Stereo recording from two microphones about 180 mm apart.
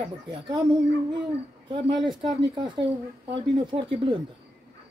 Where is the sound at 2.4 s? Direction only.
25° right (ahead or behind).